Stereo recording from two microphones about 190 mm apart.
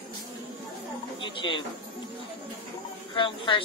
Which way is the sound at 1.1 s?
25° left (ahead or behind).